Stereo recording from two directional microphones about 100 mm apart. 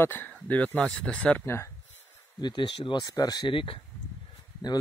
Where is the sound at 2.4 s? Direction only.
50° left (ahead or behind).